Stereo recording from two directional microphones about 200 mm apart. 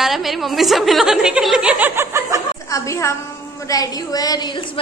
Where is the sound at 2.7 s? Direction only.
15° left (ahead or behind).